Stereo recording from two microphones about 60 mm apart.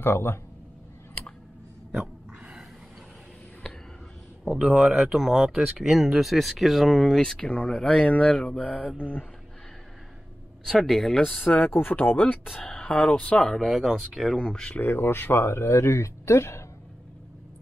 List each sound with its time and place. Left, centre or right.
0.0 s speech: left
4.6 s speech: centre
8.0 s mantra: left
10.6 s speech: centre
11.4 s mantra: left
11.7 s speech: left
12.5 s speech: centre
13.5 s speech: centre
14.4 s speech: centre
14.7 s speech: left